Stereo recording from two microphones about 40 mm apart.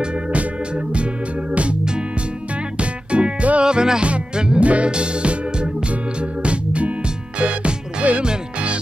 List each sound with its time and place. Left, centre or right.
1.5 s music: right
2.8 s music: right
3.6 s music: centre